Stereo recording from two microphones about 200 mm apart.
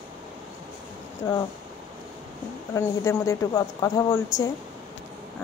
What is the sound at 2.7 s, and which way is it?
Speech, 15° left (ahead or behind).